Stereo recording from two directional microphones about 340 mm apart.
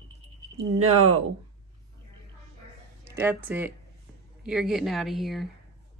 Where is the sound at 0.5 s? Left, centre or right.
Right.